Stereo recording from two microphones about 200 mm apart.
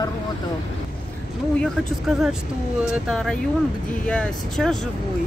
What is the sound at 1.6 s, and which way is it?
Speech, centre (ahead or behind).